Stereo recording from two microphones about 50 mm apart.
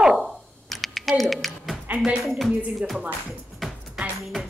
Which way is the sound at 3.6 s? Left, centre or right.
Centre.